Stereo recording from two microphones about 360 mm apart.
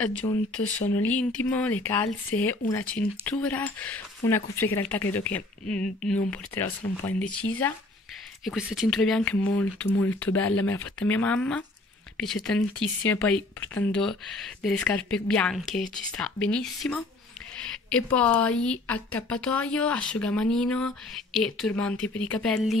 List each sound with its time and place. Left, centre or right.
1.0 s a woman's voice: centre